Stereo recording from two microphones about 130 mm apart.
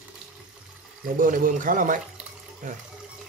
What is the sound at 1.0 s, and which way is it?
Speech, 90° right.